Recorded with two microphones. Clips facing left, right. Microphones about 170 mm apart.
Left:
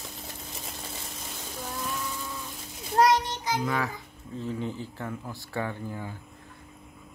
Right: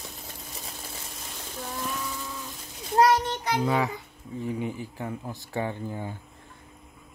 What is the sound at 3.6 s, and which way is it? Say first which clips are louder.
Speech: right 5 dB; 25° right (ahead or behind).